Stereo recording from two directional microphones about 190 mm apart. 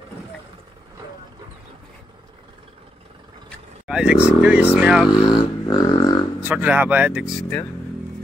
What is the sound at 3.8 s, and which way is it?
Speech, 5° right (ahead or behind).